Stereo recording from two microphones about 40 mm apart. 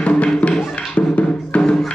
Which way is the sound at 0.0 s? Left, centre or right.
Left.